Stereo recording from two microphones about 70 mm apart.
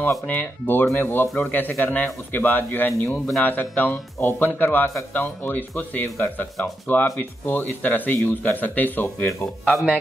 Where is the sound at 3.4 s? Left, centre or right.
Left.